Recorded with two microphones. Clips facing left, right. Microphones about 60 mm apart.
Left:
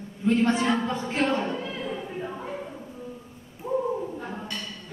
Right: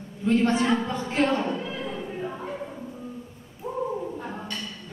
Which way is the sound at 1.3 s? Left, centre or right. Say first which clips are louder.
Right 1 dB; centre.